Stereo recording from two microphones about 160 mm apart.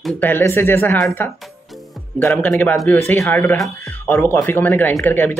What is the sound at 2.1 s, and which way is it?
Speech, 10° left (ahead or behind).